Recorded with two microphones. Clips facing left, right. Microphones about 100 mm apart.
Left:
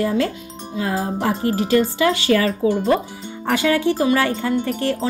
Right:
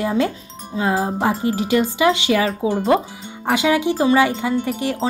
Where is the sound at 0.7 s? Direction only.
30° right (ahead or behind).